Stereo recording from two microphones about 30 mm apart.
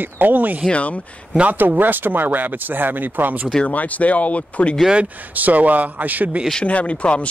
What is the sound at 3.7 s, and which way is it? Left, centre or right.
Speech, left.